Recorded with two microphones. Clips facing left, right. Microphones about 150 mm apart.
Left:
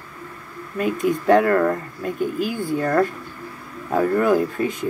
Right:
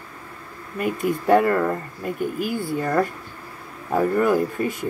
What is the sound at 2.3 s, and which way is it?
Speech, 50° right (ahead or behind).